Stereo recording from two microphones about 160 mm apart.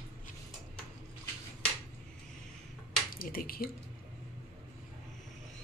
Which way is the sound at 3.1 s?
65° left (ahead or behind).